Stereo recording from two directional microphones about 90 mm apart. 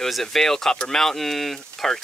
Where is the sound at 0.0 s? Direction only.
5° left (ahead or behind).